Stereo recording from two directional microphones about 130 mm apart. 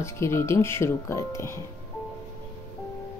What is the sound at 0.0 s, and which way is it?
Speech, 20° left (ahead or behind).